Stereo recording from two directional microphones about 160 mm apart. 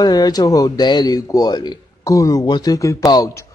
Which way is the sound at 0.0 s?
25° left (ahead or behind).